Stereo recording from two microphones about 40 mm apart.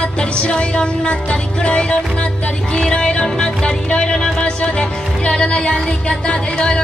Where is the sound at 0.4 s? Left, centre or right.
Left.